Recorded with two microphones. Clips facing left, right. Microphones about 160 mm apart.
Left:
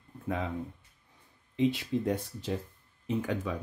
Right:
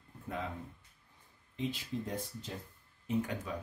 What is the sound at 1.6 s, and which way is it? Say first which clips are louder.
Speech: left 9 dB; 75° left (ahead or behind).